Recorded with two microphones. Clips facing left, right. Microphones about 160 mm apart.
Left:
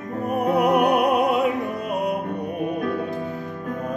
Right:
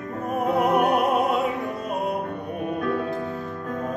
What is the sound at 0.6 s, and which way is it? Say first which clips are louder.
Opera: left 2 dB; 20° left (ahead or behind).